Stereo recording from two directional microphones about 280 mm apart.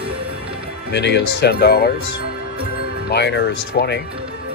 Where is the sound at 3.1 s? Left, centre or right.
Left.